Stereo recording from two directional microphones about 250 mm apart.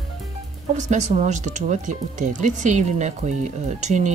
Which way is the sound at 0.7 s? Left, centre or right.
Right.